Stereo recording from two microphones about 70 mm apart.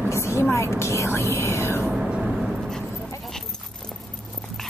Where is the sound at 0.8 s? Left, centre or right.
Left.